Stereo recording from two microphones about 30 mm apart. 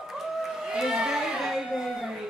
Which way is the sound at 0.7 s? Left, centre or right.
Right.